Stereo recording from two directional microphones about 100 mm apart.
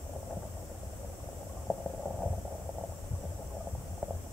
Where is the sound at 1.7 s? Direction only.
20° left (ahead or behind).